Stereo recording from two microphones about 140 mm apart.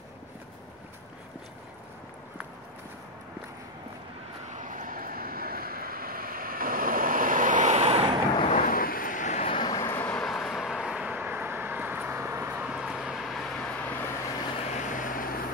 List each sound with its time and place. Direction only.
4.5 s vehicle: 65° right (ahead or behind); by 8.1 s 45° right (ahead or behind)
8.4 s vehicle: 55° left (ahead or behind)
8.6 s vehicle: 90° left; by 9.5 s 60° left (ahead or behind)
9.5 s vehicle: 30° left (ahead or behind); by 12.6 s 15° right (ahead or behind)
12.6 s vehicle: 5° right (ahead or behind)
14.5 s vehicle: 50° left (ahead or behind); by 15.4 s 85° left